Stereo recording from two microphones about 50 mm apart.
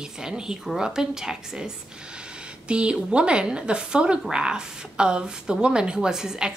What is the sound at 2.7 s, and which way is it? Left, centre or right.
A woman's voice, right.